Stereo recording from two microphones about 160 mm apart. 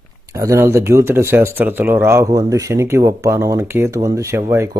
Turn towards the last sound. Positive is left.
turn(degrees=-15)  # may be behind; listen again after turning